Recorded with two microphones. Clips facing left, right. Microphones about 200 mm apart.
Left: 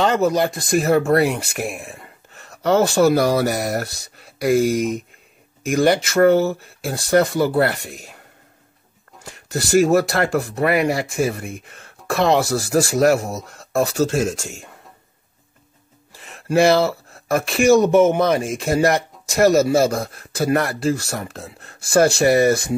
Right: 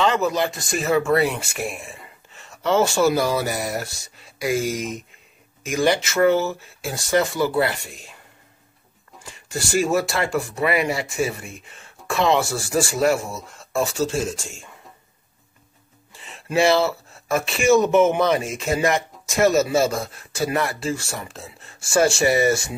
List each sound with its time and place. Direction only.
0.0 s speech: 50° left (ahead or behind)
5.7 s speech: 55° left (ahead or behind)
9.2 s speech: 60° left (ahead or behind)
16.2 s a sound: 55° left (ahead or behind)
17.9 s speech: 45° left (ahead or behind)
19.4 s speech: 35° left (ahead or behind)
19.8 s speech: 55° left (ahead or behind)